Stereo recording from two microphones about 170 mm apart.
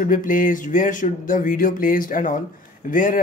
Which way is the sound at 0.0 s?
50° left (ahead or behind).